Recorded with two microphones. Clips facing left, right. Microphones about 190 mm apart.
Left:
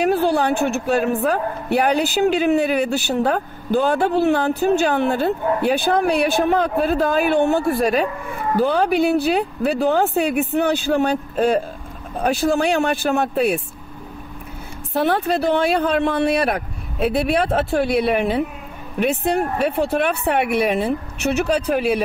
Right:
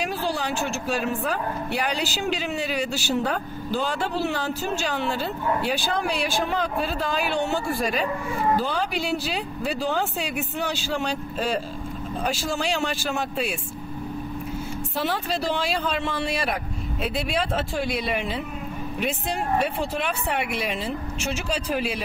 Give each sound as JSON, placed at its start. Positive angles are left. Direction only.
{"t": 0.0, "sound": "a woman's voice", "side_deg": 60}
{"t": 15.0, "sound": "a woman's voice", "side_deg": 60}